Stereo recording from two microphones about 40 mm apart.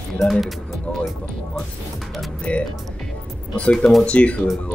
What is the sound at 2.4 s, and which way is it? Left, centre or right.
Speech, left.